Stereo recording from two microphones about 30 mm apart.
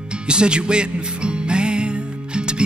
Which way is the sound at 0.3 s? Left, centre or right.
Right.